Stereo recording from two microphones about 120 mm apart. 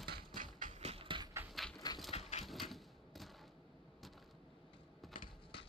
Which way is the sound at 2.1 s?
65° left (ahead or behind).